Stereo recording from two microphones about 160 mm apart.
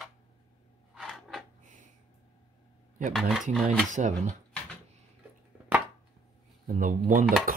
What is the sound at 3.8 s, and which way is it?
Speech, 50° right (ahead or behind).